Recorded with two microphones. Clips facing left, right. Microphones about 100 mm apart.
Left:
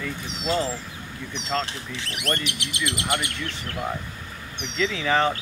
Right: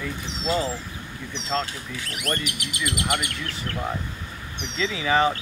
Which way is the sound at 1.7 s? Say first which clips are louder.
Even; 25° left (ahead or behind).